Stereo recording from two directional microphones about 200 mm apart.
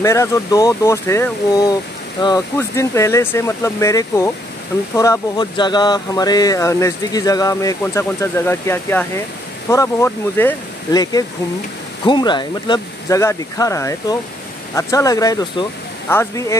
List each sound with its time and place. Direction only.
0.0 s speech: 15° left (ahead or behind)